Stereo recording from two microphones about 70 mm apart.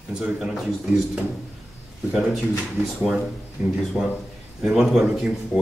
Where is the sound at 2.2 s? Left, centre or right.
Centre.